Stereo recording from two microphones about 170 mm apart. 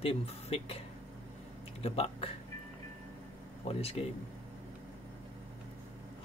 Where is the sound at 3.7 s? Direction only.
35° left (ahead or behind).